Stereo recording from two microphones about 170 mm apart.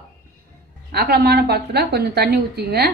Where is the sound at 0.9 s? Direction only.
70° right (ahead or behind).